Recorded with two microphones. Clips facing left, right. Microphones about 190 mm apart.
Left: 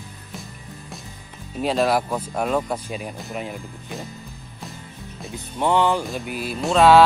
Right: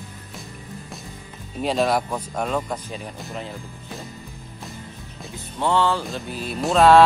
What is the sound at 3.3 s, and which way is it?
Music, 15° left (ahead or behind).